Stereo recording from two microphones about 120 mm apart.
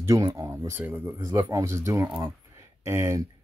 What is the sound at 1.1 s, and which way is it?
Speech, 30° right (ahead or behind).